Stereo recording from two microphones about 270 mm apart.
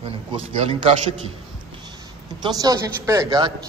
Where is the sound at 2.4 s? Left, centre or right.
Centre.